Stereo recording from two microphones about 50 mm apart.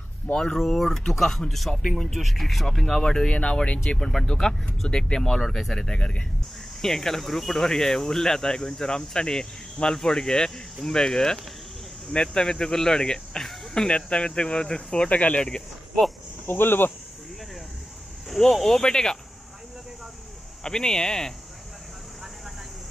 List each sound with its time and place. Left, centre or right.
0.3 s speech: centre
0.6 s speech: centre
2.1 s speech: centre
6.8 s speech: centre
15.0 s speech: left
16.4 s speech: left
18.3 s speech: centre
20.6 s speech: centre